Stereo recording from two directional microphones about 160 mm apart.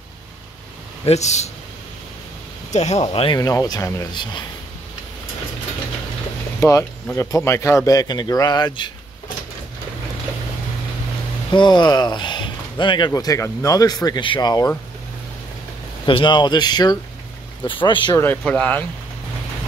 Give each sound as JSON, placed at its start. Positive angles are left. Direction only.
{"t": 1.0, "sound": "speech", "side_deg": 45}
{"t": 2.7, "sound": "speech", "side_deg": 45}
{"t": 3.3, "sound": "speech", "side_deg": 20}
{"t": 6.6, "sound": "speech", "side_deg": 15}
{"t": 11.5, "sound": "speech", "side_deg": 30}
{"t": 16.1, "sound": "speech", "side_deg": 30}
{"t": 18.1, "sound": "speech", "side_deg": 15}